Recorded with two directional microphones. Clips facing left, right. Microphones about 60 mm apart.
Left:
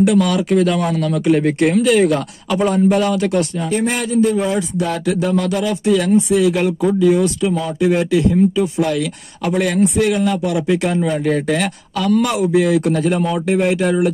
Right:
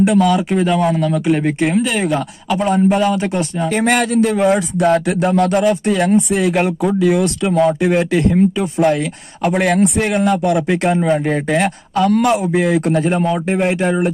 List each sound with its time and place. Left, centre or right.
0.2 s a man's voice: centre
3.6 s speech: right
11.9 s a man's voice: right